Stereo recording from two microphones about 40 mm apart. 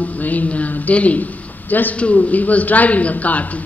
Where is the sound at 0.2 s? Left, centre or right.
Left.